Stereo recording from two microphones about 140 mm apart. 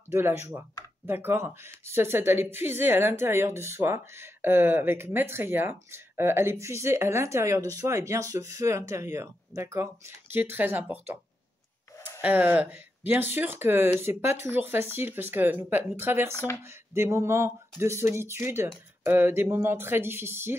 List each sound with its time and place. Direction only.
0.1 s a woman's voice: 20° right (ahead or behind)